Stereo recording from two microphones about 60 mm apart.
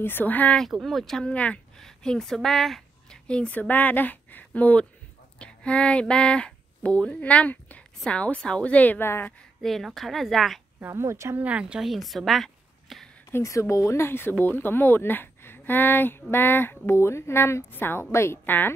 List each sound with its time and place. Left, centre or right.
0.0 s speech: left
0.8 s a woman's voice: centre
1.3 s a woman's voice: left
1.8 s speech: centre
3.3 s a woman's voice: left
8.7 s a woman's voice: left
9.6 s a woman's voice: centre
10.9 s speech: right
11.3 s speech: right
11.8 s a woman's voice: centre
12.9 s a sound: centre
13.4 s speech: left
14.0 s a woman's voice: left
18.4 s speech: left